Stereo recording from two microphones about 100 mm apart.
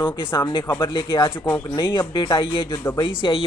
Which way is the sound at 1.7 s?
50° left (ahead or behind).